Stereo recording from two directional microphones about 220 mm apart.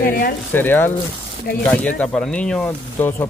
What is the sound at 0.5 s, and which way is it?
Speech, 10° left (ahead or behind).